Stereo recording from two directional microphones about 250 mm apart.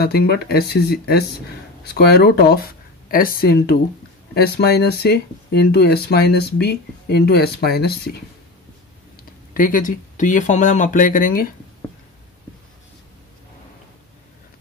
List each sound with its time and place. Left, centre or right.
0.0 s speech: left
9.5 s speech: left